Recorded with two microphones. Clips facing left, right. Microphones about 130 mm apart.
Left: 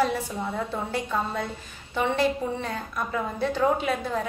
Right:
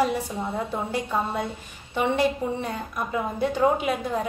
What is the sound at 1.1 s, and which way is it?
A woman's voice, 15° right (ahead or behind).